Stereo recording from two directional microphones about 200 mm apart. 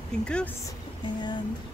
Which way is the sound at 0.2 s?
5° left (ahead or behind).